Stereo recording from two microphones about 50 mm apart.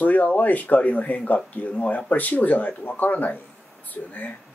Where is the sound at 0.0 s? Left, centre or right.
Left.